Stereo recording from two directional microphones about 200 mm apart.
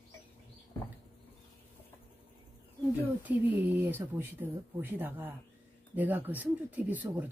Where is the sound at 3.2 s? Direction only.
10° right (ahead or behind).